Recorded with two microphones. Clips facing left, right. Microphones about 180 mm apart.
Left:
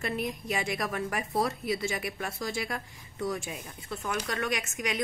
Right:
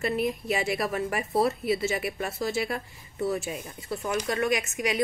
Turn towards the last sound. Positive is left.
turn(degrees=-5)  # may be behind; listen again after turning